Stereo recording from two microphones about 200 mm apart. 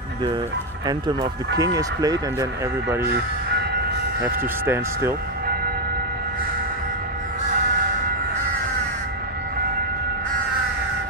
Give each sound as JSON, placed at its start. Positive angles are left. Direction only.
{"t": 0.8, "sound": "speech", "side_deg": -20}
{"t": 4.2, "sound": "speech", "side_deg": -15}